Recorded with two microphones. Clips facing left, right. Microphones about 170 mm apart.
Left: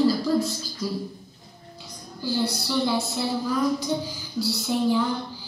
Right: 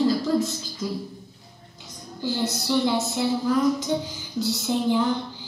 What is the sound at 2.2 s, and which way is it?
Speech, 20° right (ahead or behind).